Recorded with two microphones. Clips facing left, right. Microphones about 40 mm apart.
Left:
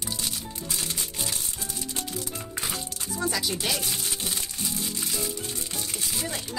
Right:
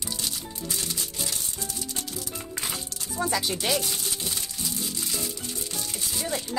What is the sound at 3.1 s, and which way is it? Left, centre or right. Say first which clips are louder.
Music: right 2 dB; right.